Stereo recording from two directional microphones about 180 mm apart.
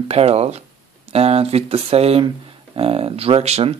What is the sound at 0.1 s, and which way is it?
Speech, 35° right (ahead or behind).